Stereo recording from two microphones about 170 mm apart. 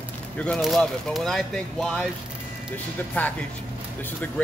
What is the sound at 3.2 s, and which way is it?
Speech, 10° left (ahead or behind).